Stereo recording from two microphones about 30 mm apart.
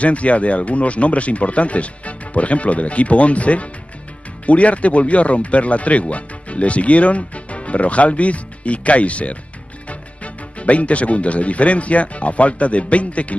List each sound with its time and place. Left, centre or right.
0.0 s speech: left